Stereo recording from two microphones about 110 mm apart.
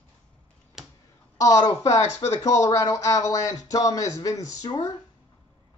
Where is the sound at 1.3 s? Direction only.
30° left (ahead or behind).